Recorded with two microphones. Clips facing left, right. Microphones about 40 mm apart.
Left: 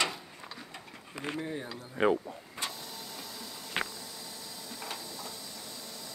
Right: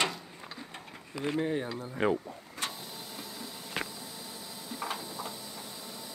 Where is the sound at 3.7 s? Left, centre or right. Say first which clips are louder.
Left 2 dB; left.